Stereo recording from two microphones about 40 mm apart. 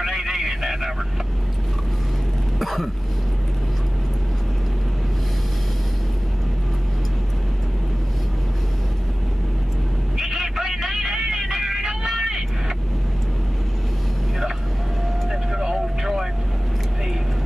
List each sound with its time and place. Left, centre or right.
0.0 s vehicle: centre
2.6 s a sound: centre
10.1 s vehicle: centre
15.5 s vehicle: centre